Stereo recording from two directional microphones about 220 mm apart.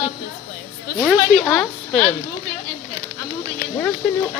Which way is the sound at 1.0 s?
5° left (ahead or behind).